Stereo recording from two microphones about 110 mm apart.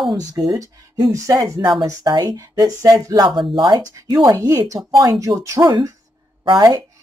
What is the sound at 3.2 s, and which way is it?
Speech, 45° right (ahead or behind).